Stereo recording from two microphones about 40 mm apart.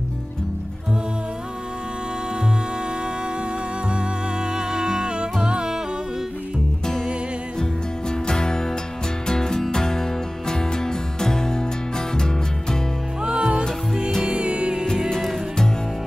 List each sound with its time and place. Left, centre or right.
3.9 s music: right
8.1 s music: centre
13.2 s music: centre
15.0 s music: centre